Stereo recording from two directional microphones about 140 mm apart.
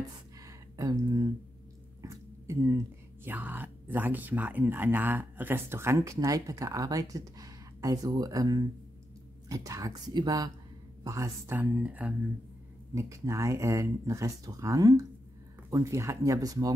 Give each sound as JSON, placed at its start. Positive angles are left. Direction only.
{"t": 0.5, "sound": "a sound", "side_deg": -25}
{"t": 3.3, "sound": "speech", "side_deg": -10}
{"t": 12.9, "sound": "speech", "side_deg": -20}